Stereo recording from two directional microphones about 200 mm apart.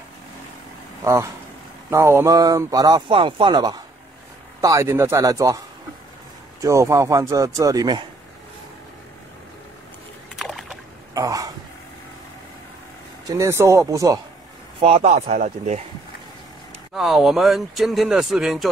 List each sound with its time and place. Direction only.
1.0 s speech: 15° right (ahead or behind)
6.6 s speech: 15° right (ahead or behind)
10.4 s boat: centre (ahead or behind)
11.1 s a sound: 15° right (ahead or behind)
13.3 s speech: 15° right (ahead or behind)
14.8 s speech: 30° right (ahead or behind)
15.2 s speech: 40° right (ahead or behind)
16.9 s speech: centre (ahead or behind)